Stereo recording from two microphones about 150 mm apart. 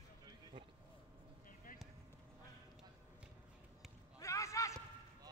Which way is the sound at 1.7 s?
65° left (ahead or behind).